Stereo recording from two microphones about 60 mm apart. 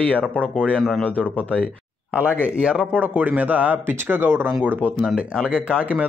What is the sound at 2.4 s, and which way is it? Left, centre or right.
Speech, centre.